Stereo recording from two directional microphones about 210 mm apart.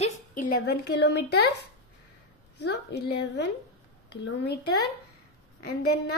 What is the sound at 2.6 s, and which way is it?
Speech, 55° left (ahead or behind).